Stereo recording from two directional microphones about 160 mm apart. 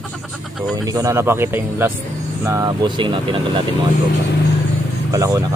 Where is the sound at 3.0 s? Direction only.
30° right (ahead or behind).